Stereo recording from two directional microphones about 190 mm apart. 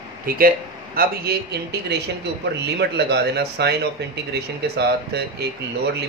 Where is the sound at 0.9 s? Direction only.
60° right (ahead or behind).